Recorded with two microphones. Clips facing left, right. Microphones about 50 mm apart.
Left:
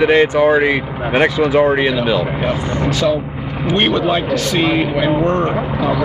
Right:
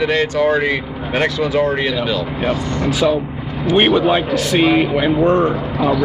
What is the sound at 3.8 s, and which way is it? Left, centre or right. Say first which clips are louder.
A man's voice: right 2 dB; centre.